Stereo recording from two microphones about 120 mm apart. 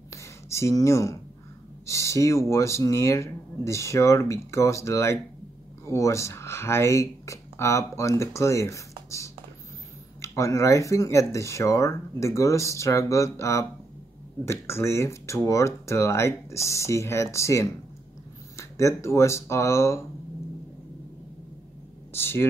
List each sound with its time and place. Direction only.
0.1 s a sound: 25° left (ahead or behind)
1.9 s speech: 25° left (ahead or behind)
22.1 s speech: 20° left (ahead or behind)